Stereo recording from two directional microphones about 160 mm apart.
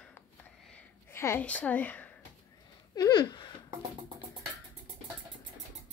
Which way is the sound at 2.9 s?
25° left (ahead or behind).